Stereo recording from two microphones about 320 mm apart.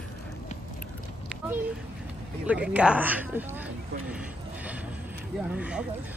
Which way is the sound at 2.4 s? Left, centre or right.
Centre.